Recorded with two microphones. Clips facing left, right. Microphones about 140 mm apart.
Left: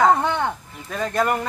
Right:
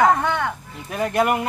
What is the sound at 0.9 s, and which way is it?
Speech, 15° right (ahead or behind).